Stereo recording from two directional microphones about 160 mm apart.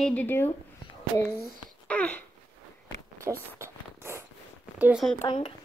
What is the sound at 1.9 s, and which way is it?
Speech, 10° left (ahead or behind).